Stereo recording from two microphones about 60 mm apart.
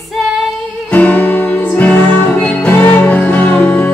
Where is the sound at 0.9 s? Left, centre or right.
Left.